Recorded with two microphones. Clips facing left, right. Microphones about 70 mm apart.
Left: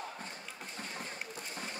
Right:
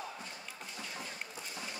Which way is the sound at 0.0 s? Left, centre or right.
Left.